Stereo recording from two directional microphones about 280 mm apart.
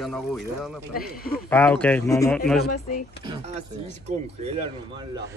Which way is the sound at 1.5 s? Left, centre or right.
Centre.